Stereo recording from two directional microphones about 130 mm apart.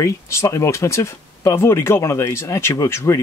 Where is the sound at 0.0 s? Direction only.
20° left (ahead or behind).